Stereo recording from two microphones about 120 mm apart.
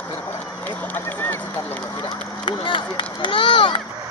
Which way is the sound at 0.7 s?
15° left (ahead or behind).